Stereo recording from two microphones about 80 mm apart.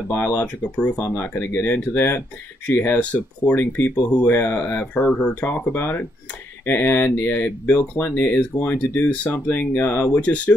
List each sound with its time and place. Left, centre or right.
0.1 s speech: left